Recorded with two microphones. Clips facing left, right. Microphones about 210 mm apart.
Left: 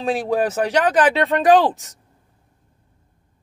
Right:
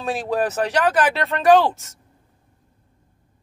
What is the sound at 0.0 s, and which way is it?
Speech, 10° left (ahead or behind).